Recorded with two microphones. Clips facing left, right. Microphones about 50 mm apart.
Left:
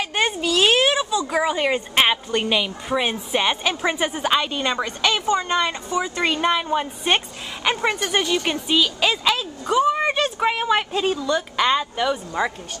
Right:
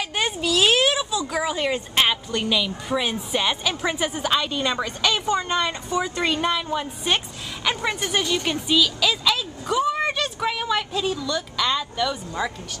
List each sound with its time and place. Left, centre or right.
0.0 s a sound: centre; by 2.7 s left
2.9 s a woman's voice: centre
5.9 s speech: left
6.2 s a woman's voice: centre
6.5 s speech: left
7.9 s speech: centre; by 11.1 s left
11.1 s speech: left
12.1 s a woman's voice: centre